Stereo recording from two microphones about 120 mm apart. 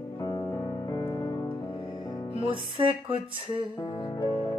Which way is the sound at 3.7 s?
35° left (ahead or behind).